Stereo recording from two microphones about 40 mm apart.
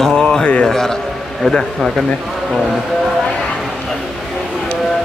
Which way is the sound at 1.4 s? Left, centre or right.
Centre.